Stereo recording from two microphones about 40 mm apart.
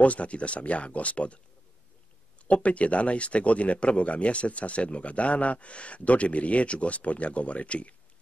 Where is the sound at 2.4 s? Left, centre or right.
Left.